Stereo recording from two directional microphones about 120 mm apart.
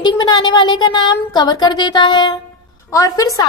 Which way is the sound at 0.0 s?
40° left (ahead or behind).